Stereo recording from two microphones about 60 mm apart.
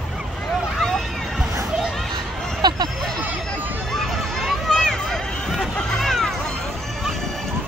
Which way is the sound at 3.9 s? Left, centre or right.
Centre.